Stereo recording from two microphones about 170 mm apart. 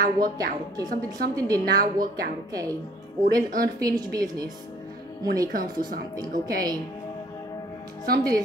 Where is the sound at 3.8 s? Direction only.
20° right (ahead or behind).